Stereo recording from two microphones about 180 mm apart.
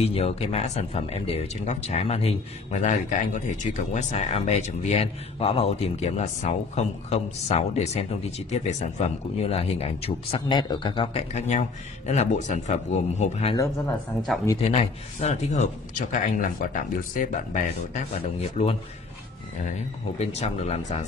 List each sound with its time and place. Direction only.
0.0 s speech: 35° left (ahead or behind)
14.6 s speech: 35° left (ahead or behind)
20.2 s speech: 35° left (ahead or behind)